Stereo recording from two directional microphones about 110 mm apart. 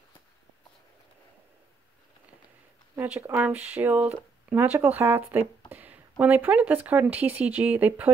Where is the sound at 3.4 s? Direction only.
15° right (ahead or behind).